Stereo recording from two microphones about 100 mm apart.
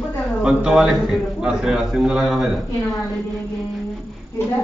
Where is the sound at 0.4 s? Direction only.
5° right (ahead or behind).